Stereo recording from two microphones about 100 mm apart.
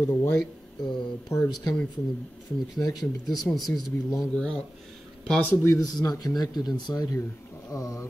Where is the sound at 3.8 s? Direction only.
35° left (ahead or behind).